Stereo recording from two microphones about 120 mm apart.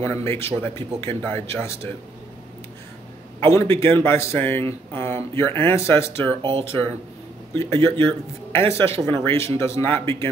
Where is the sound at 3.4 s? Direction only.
25° left (ahead or behind).